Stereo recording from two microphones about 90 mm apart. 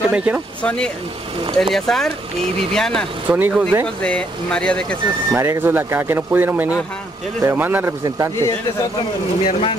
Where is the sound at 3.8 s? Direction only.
10° left (ahead or behind).